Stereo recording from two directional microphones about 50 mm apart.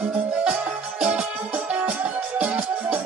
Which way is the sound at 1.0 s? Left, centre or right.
Right.